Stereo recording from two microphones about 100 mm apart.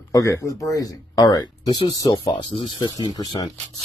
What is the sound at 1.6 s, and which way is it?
Speech, 60° left (ahead or behind).